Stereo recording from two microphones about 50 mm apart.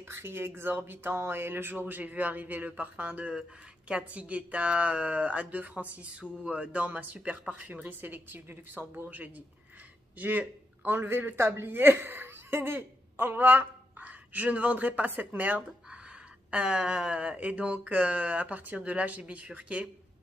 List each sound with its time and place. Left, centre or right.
0.1 s speech: right
8.0 s speech: right
11.0 s speech: right
16.4 s speech: right